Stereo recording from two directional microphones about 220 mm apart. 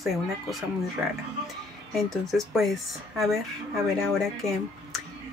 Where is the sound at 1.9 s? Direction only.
Centre (ahead or behind).